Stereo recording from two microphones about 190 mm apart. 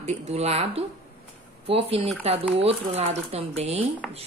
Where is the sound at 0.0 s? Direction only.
35° right (ahead or behind).